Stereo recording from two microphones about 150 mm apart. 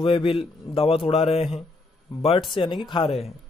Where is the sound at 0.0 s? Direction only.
35° left (ahead or behind).